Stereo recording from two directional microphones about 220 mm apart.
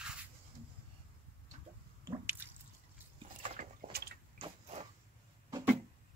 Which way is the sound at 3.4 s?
35° right (ahead or behind).